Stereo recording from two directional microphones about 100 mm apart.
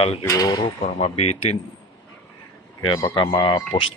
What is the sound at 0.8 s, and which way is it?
Speech, 80° left.